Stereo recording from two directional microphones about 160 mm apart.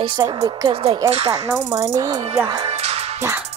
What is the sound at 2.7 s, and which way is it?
Music, 40° right (ahead or behind).